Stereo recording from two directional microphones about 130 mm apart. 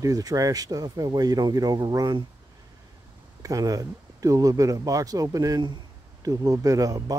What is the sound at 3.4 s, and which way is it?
Speech, 25° right (ahead or behind).